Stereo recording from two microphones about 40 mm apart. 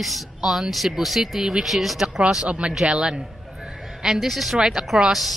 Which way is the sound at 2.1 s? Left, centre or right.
Centre.